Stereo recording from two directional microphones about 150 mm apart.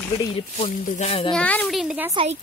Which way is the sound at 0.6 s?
45° left (ahead or behind).